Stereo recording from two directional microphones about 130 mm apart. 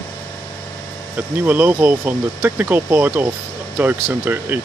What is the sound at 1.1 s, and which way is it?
Speech, 15° right (ahead or behind).